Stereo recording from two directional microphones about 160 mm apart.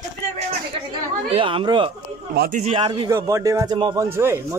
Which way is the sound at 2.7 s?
30° right (ahead or behind).